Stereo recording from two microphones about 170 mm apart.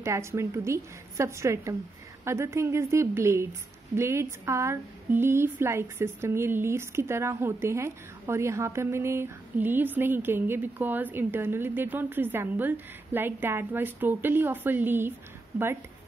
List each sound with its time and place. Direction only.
0.0 s speech: 15° right (ahead or behind)